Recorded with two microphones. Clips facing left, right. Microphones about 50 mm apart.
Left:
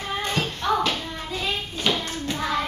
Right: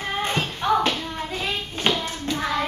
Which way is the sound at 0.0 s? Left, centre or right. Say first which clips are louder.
Right 1 dB; right.